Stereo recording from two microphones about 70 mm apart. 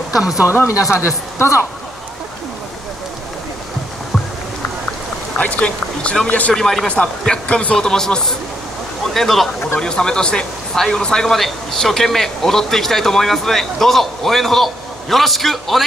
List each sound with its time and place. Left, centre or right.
0.2 s speech: centre
0.8 s a woman's voice: left
5.4 s speech: centre
6.5 s speech: centre
6.9 s speech: centre